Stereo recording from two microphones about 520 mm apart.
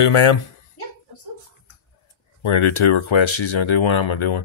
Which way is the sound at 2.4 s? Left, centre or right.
Left.